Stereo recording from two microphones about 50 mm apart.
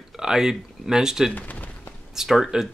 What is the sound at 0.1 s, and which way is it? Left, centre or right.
Speech, centre.